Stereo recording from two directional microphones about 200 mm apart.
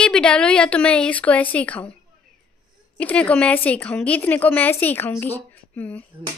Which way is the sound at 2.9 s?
5° left (ahead or behind).